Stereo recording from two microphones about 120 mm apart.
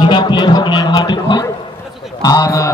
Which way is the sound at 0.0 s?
40° left (ahead or behind).